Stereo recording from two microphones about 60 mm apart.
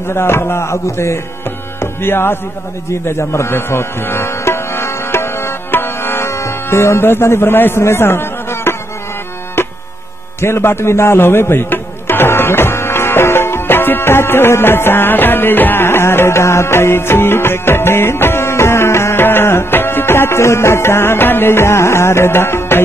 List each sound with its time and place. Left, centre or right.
0.1 s music: left
1.8 s tabla: left
2.9 s music: left
9.6 s a sound: left
10.4 s music: left